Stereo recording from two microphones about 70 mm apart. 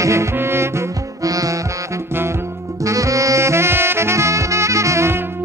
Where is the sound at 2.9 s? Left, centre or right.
Right.